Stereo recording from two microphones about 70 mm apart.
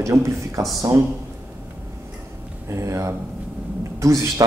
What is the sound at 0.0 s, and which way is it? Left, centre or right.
Speech, right.